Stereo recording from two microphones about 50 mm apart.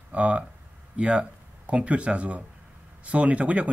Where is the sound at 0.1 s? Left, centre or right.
Right.